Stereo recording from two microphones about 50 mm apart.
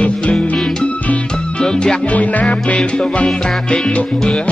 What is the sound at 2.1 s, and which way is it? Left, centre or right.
Music, left.